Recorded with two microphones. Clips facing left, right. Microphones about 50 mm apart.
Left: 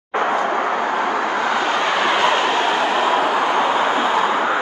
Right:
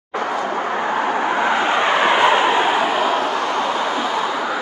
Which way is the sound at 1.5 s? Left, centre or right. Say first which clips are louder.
Right 2 dB; right.